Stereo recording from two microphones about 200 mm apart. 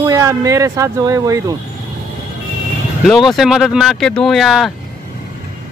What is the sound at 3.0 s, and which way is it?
Speech, centre (ahead or behind).